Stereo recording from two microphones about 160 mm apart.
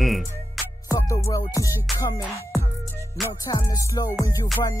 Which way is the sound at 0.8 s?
20° left (ahead or behind).